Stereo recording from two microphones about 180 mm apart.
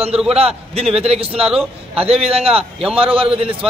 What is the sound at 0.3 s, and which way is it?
A man's voice, 35° right (ahead or behind).